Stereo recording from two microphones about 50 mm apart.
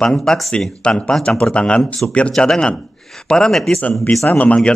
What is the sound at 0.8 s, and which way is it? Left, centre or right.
A man's voice, centre.